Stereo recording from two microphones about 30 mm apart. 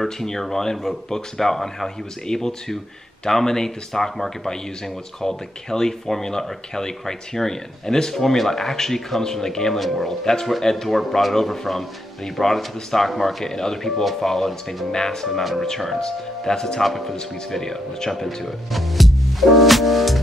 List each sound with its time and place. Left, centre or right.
0.0 s speech: centre
8.1 s speech: centre
9.8 s speech: centre
10.6 s speech: centre
10.9 s speech: centre
13.4 s speech: centre
16.8 s speech: centre
17.5 s speech: centre
18.7 s music: centre